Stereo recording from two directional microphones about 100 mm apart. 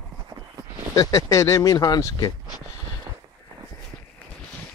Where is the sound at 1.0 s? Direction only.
35° left (ahead or behind).